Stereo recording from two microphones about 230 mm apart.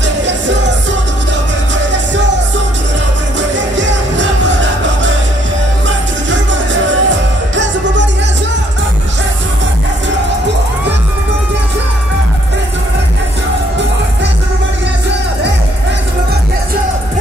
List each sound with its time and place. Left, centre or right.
3.3 s music: right
5.9 s music: right